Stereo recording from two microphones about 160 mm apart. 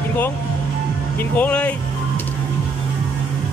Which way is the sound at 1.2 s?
10° left (ahead or behind).